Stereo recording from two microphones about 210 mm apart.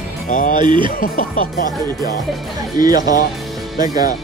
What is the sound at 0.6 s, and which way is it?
Speech, 25° right (ahead or behind).